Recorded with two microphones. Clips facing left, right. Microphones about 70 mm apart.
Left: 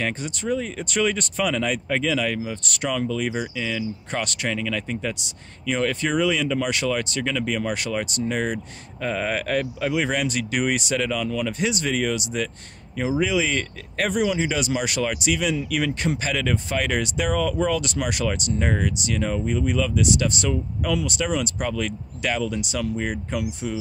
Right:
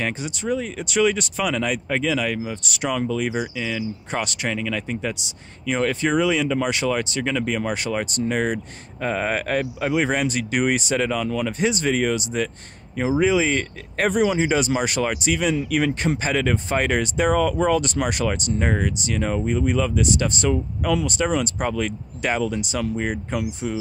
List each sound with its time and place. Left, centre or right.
0.0 s speech: centre; by 23.8 s right